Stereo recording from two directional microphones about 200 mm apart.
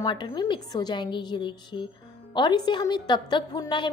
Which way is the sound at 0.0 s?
20° left (ahead or behind).